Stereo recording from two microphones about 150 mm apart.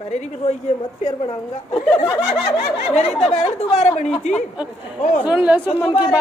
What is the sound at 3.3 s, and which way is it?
Speech, 50° left (ahead or behind).